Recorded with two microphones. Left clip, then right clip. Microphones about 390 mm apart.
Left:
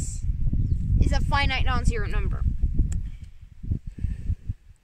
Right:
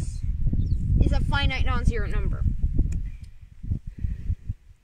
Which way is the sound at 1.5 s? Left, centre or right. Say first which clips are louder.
Left 2 dB; centre.